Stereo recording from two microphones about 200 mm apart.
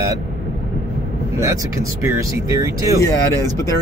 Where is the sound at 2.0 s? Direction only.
15° right (ahead or behind).